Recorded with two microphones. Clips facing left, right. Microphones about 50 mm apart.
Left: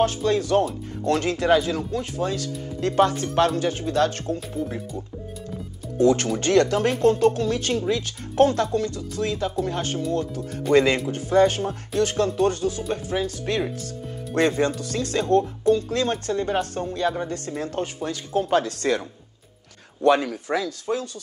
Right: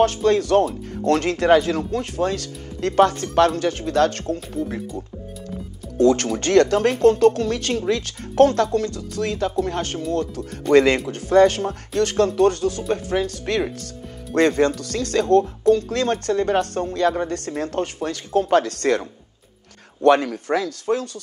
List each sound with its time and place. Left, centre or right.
0.0 s speech: right
5.9 s speech: right